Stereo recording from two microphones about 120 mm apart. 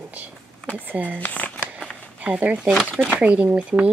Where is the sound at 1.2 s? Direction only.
15° left (ahead or behind).